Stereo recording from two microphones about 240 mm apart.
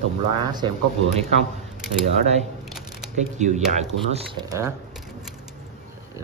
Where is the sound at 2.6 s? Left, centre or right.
Centre.